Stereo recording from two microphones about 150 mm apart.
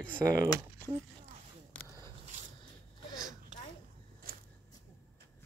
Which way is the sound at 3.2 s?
65° right (ahead or behind).